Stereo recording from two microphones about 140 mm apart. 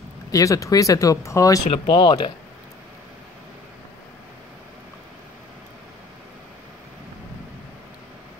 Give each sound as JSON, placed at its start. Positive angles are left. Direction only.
{"t": 0.3, "sound": "speech", "side_deg": 25}
{"t": 1.7, "sound": "speech", "side_deg": 35}